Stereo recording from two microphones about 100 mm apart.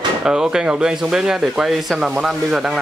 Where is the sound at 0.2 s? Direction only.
10° right (ahead or behind).